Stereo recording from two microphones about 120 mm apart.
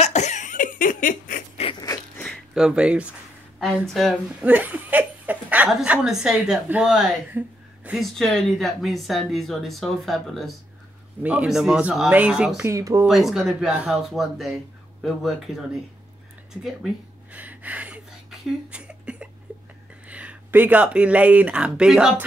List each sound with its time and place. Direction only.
0.0 s cough: 75° left (ahead or behind); by 1.4 s 90° left
1.6 s a sound: 55° left (ahead or behind)
2.2 s a sound: centre (ahead or behind)
3.6 s speech: centre (ahead or behind)
4.5 s laughter: 15° right (ahead or behind)
5.8 s speech: 5° right (ahead or behind)
7.3 s a sound: 10° right (ahead or behind)
8.0 s speech: centre (ahead or behind)
12.6 s speech: 25° right (ahead or behind)
13.0 s speech: 5° right (ahead or behind)
16.6 s a sound: 10° right (ahead or behind)
20.1 s speech: 10° right (ahead or behind)